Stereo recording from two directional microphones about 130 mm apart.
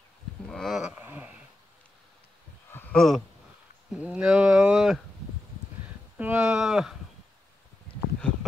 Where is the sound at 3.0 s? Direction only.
Centre (ahead or behind).